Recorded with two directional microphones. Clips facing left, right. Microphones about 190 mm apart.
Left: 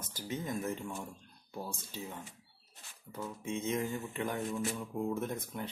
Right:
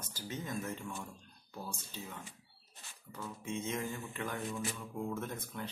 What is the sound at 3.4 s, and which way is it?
Speech, 25° left (ahead or behind).